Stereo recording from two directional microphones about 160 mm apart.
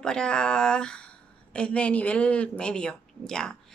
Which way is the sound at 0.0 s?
5° left (ahead or behind).